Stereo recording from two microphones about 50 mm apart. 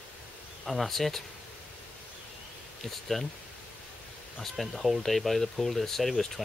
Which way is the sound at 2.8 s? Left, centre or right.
Centre.